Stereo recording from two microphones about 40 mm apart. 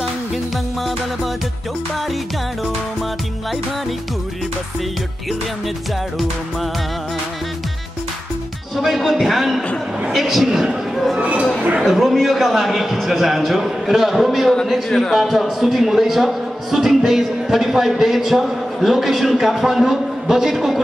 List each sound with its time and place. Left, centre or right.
8.8 s speech: centre
11.1 s speech: right
11.8 s speech: centre